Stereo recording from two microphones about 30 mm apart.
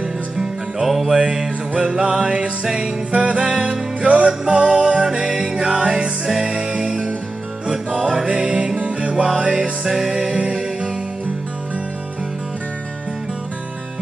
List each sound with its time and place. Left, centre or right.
0.8 s music: centre
1.1 s music: right
3.1 s music: right